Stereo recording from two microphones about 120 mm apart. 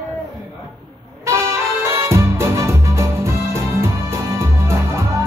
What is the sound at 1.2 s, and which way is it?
Music, 20° right (ahead or behind).